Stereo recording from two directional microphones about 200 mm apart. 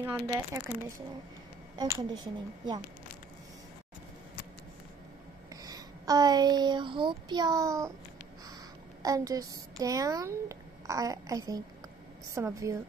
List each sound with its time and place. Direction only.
0.0 s a child's voice: 15° right (ahead or behind)
5.6 s child singing: 20° right (ahead or behind)
9.0 s a child's voice: 15° right (ahead or behind)